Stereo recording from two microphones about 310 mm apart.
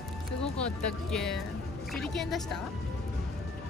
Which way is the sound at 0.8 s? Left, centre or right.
Centre.